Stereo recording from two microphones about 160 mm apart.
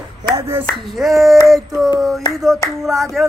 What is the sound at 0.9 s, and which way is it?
Female singing, centre (ahead or behind).